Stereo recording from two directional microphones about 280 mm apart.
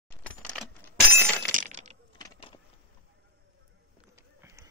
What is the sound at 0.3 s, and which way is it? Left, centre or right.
Keys jangling, centre.